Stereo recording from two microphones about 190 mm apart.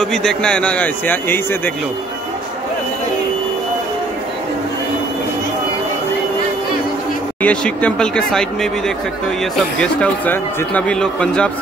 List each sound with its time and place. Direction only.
0.0 s a man's voice: 5° left (ahead or behind)
7.4 s speech: 5° left (ahead or behind)